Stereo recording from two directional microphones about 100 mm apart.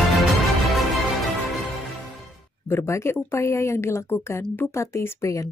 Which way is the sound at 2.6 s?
25° left (ahead or behind).